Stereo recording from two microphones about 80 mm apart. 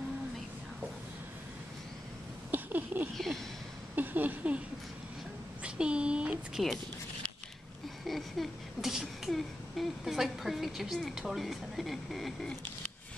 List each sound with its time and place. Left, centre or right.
2.5 s a sound: right
5.6 s a woman's voice: centre
6.5 s speech: centre
8.0 s speech: centre